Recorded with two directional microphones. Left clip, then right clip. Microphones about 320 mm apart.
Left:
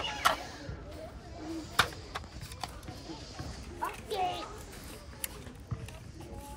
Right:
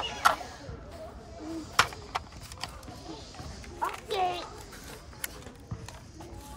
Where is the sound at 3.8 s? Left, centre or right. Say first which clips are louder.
Right 4 dB; centre.